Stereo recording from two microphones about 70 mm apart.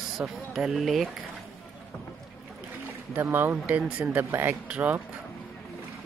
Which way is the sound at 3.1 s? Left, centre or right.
Right.